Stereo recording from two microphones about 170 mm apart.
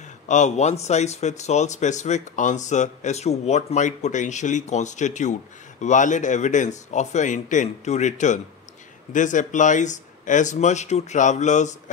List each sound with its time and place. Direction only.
0.3 s speech: 45° left (ahead or behind)